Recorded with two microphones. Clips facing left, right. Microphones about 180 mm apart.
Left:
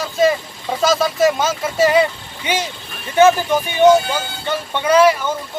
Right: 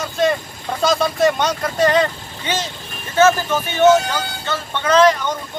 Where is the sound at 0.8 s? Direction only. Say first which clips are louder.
Left 1 dB; centre (ahead or behind).